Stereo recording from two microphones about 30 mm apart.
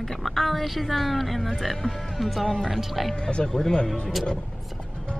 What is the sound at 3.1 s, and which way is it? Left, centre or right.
Speech, left.